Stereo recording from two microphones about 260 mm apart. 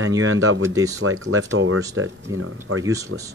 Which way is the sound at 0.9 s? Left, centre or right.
Right.